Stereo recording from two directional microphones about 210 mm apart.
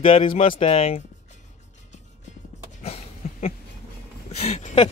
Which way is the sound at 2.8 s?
30° left (ahead or behind).